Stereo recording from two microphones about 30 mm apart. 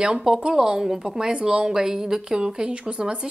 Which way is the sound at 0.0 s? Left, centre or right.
Right.